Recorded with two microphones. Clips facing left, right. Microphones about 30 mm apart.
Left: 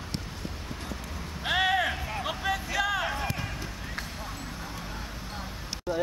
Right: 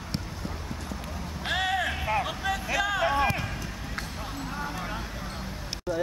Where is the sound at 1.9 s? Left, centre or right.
Right.